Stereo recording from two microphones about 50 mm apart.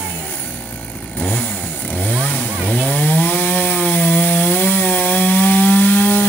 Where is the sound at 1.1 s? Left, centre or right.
Left.